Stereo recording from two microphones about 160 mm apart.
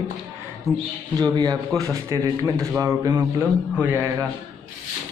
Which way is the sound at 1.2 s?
25° right (ahead or behind).